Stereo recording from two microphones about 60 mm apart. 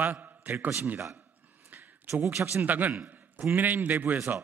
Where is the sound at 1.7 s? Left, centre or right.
Right.